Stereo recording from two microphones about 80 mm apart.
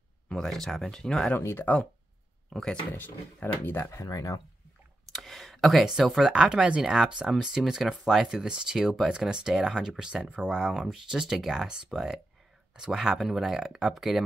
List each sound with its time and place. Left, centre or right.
0.3 s speech: centre
1.3 s speech: left
2.5 s speech: centre
2.9 s speech: left
3.9 s speech: left
5.1 s speech: centre